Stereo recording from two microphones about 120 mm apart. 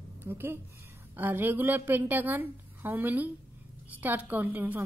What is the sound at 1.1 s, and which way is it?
A woman's voice, 15° right (ahead or behind).